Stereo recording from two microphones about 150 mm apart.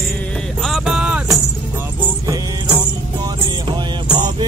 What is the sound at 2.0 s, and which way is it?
Music, 25° right (ahead or behind).